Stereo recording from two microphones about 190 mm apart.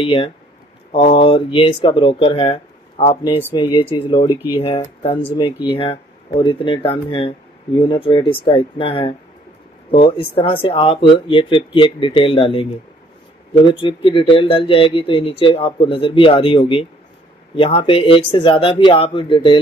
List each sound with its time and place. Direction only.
0.0 s speech: 30° left (ahead or behind)
13.7 s speech: 30° left (ahead or behind)